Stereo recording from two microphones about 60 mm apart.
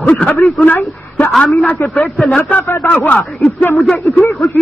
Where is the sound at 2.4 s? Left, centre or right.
Left.